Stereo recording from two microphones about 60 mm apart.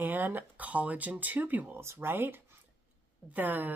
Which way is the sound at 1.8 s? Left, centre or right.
Right.